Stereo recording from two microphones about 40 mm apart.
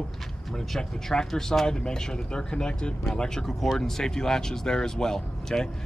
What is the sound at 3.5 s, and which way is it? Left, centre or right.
Speech, centre.